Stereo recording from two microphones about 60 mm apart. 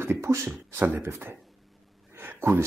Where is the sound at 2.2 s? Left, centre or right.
Right.